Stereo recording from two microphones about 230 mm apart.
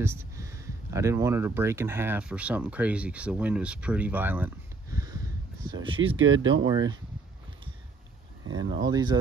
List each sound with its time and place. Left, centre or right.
0.0 s speech: centre
4.9 s a sound: centre
5.9 s speech: right
6.5 s speech: centre
8.6 s speech: centre